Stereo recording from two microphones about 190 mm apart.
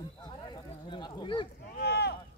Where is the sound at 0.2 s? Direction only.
25° left (ahead or behind).